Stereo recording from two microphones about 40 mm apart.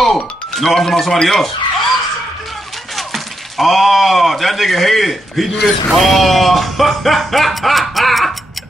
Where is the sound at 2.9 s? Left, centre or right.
Centre.